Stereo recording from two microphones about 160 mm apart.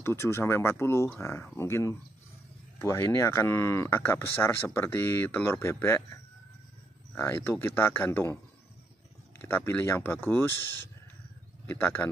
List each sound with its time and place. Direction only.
0.0 s speech: 15° left (ahead or behind)
7.2 s speech: 15° left (ahead or behind)
9.4 s speech: 15° left (ahead or behind)